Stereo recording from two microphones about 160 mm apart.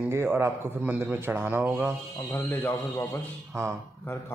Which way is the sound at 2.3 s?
15° left (ahead or behind).